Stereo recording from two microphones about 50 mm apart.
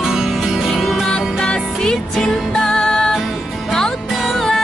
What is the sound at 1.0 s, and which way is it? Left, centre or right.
Music, centre.